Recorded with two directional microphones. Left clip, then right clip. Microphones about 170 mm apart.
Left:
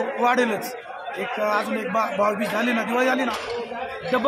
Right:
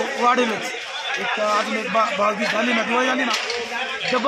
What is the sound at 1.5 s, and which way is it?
A man's voice, 20° left (ahead or behind).